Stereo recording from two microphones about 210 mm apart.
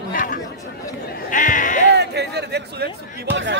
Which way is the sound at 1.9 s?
50° right (ahead or behind).